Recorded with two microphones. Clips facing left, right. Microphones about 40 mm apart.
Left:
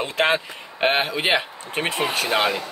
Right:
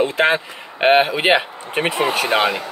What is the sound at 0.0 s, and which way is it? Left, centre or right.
Speech, centre.